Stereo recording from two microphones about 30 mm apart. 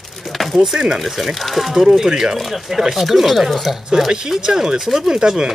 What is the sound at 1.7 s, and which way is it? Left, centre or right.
Speech, centre.